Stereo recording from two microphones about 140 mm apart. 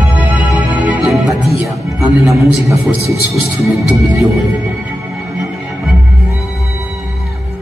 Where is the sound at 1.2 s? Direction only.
20° right (ahead or behind).